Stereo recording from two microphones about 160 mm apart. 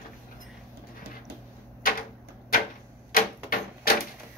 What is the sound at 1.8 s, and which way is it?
Typewriter, 65° left (ahead or behind).